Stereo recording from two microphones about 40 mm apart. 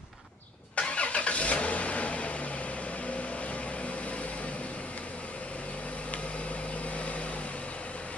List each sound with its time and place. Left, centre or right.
0.7 s vehicle: left